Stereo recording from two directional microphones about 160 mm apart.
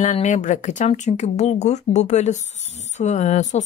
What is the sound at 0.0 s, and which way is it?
Speech, 45° left (ahead or behind).